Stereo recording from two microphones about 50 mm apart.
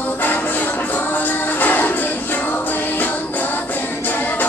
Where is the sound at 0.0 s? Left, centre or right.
Left.